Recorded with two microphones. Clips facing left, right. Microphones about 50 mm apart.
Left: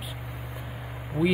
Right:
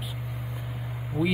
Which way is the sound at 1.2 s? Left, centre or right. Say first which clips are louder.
Left 2 dB; left.